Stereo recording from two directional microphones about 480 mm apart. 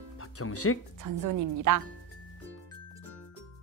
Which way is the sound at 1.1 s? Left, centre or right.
Right.